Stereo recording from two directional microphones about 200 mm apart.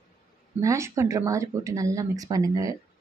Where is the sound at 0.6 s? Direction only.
15° right (ahead or behind).